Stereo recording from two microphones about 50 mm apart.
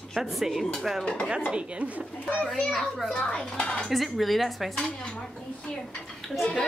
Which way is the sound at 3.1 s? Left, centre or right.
Left.